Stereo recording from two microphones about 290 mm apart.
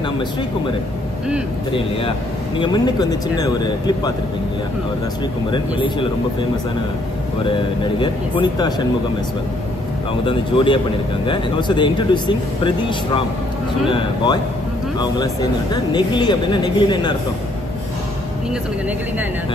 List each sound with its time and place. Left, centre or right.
2.6 s speech: centre
5.5 s speech: centre
7.4 s speech: centre
10.2 s speech: centre
15.7 s speech: centre